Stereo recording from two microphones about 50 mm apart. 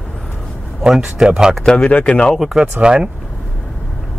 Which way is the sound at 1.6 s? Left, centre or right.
Centre.